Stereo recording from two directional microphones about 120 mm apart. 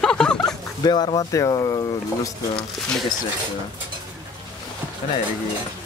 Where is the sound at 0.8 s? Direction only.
35° left (ahead or behind).